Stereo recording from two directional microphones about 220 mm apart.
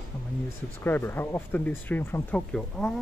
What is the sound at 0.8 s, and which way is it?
Speech, 10° left (ahead or behind).